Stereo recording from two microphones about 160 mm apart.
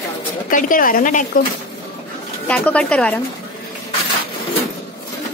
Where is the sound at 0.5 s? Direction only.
60° left (ahead or behind).